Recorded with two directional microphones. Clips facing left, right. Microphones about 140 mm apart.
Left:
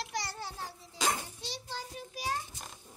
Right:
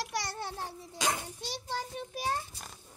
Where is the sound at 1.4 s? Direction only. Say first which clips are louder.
Right 4 dB; 55° right (ahead or behind).